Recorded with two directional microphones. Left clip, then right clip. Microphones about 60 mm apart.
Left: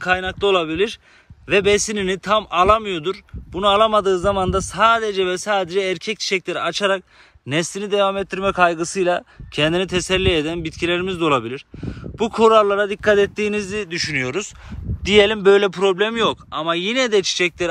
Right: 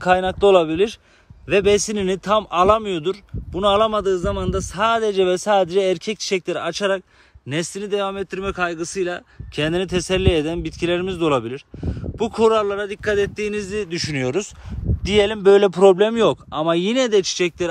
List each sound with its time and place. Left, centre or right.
0.0 s speech: right
1.5 s speech: right
3.6 s speech: right
4.0 s speech: centre
4.9 s speech: right
7.4 s speech: centre
9.5 s speech: centre
9.8 s speech: right
13.0 s speech: left
13.8 s speech: right
15.0 s speech: right
15.4 s speech: right
15.7 s speech: right
17.0 s speech: right